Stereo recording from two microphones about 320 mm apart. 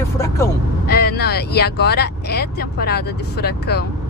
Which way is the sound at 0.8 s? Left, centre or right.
Left.